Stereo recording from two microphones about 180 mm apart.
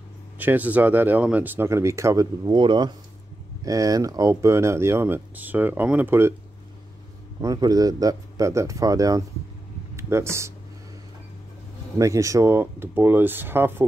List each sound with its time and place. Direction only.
0.4 s speech: 10° right (ahead or behind)
7.4 s speech: 20° right (ahead or behind)
12.0 s speech: 15° right (ahead or behind)